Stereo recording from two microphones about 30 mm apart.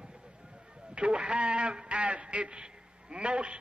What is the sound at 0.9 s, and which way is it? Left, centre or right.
A man's voice, right.